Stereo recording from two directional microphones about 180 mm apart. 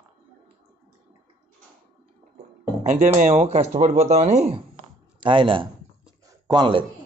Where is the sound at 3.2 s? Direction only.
40° right (ahead or behind).